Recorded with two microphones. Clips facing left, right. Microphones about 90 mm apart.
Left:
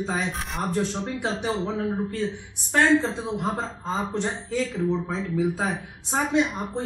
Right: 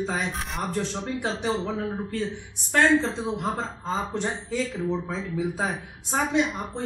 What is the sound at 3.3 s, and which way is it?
A woman's voice, 20° left (ahead or behind).